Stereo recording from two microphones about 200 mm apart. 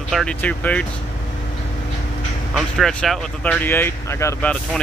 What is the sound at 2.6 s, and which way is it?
Speech, centre (ahead or behind).